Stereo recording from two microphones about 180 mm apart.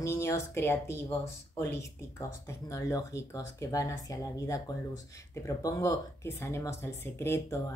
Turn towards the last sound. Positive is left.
turn(degrees=15)  # may be behind; listen again after turning